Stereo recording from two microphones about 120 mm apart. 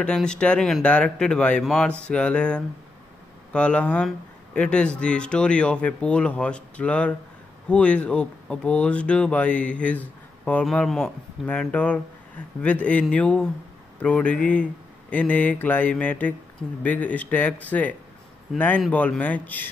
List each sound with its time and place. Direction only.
0.0 s speech: 5° left (ahead or behind)